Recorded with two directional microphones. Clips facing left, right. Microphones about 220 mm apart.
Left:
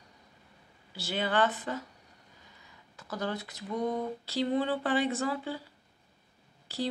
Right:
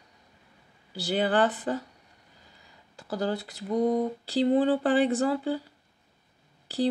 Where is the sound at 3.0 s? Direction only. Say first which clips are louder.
Right 5 dB; 30° right (ahead or behind).